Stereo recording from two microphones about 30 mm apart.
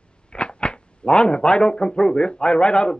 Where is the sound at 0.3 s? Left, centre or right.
Left.